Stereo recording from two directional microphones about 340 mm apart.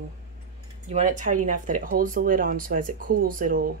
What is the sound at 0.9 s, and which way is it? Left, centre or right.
Speech, right.